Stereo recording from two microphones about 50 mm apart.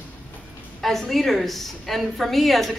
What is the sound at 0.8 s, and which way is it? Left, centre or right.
A woman's voice, centre.